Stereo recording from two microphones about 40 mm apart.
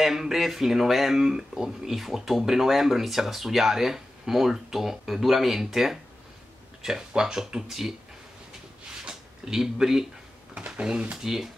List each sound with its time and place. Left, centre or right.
0.0 s speech: centre
9.0 s a sound: centre
9.6 s speech: centre
10.5 s speech: right